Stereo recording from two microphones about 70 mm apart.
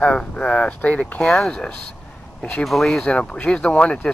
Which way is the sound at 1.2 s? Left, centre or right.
Centre.